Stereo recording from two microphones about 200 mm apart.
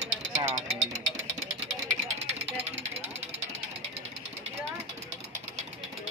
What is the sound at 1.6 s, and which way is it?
Vehicle, 35° right (ahead or behind).